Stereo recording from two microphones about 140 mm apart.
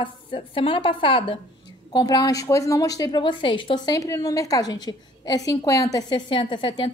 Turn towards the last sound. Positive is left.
turn(degrees=35)  # may be behind; listen again after turning